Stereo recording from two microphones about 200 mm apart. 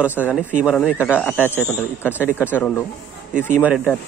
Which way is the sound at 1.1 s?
10° left (ahead or behind).